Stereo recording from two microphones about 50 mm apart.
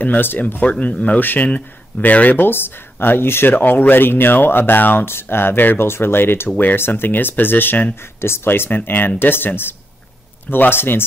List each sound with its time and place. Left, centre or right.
0.0 s speech: left
0.6 s speech: left
1.2 s speech: left
2.3 s speech: left
3.5 s speech: left
7.9 s speech: left